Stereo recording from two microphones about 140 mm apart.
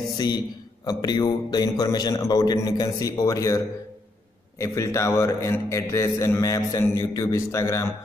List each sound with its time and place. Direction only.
0.8 s a man's voice: 30° left (ahead or behind)